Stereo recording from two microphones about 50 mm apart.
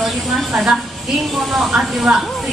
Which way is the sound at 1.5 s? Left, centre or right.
Centre.